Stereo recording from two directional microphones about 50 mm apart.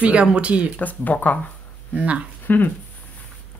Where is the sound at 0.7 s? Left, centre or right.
Left.